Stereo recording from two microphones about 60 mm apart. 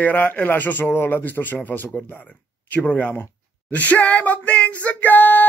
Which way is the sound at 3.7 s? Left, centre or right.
Left.